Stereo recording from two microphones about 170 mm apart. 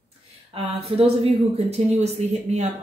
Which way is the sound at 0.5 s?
35° right (ahead or behind).